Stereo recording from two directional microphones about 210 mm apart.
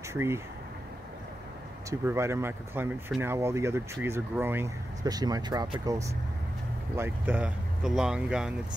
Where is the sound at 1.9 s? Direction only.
10° right (ahead or behind).